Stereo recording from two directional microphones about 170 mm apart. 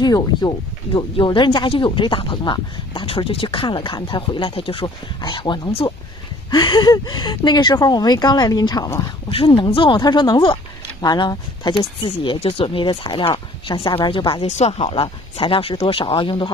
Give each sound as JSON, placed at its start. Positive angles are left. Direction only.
{"t": 0.0, "sound": "speech", "side_deg": 25}
{"t": 9.3, "sound": "speech", "side_deg": 30}